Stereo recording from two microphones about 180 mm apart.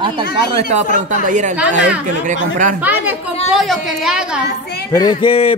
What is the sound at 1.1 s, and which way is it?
Speech, 45° right (ahead or behind).